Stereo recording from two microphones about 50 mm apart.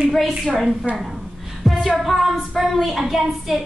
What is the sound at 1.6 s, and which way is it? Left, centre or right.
Singing, centre.